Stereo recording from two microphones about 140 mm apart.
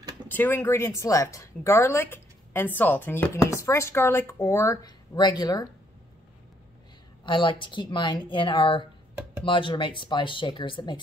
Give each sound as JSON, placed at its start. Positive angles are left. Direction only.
{"t": 0.3, "sound": "speech", "side_deg": 15}
{"t": 7.2, "sound": "speech", "side_deg": 35}